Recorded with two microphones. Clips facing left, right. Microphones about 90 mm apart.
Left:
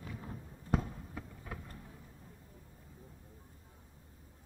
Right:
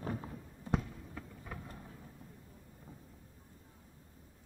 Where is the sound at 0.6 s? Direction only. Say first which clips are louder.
Left 1 dB; centre (ahead or behind).